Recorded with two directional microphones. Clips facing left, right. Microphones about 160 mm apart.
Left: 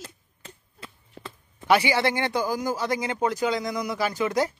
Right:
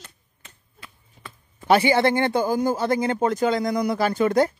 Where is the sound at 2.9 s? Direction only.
55° right (ahead or behind).